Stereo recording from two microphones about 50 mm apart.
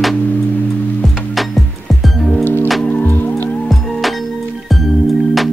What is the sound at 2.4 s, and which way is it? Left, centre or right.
Music, left.